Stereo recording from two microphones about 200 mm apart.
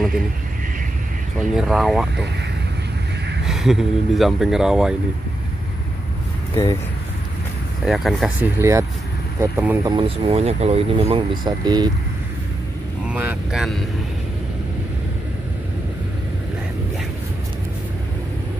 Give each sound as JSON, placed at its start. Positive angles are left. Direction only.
{"t": 1.4, "sound": "speech", "side_deg": 0}
{"t": 3.4, "sound": "speech", "side_deg": 0}
{"t": 6.5, "sound": "speech", "side_deg": 15}
{"t": 7.8, "sound": "speech", "side_deg": 0}
{"t": 8.5, "sound": "speech", "side_deg": -15}
{"t": 9.9, "sound": "speech", "side_deg": -30}
{"t": 13.1, "sound": "speech", "side_deg": -10}